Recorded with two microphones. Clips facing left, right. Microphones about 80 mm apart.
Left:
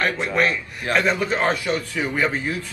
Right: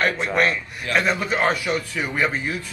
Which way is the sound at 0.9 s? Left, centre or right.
Left.